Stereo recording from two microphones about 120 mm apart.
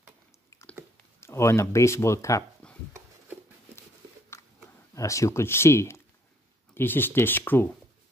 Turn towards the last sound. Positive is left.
turn(degrees=15)  # may be behind; listen again after turning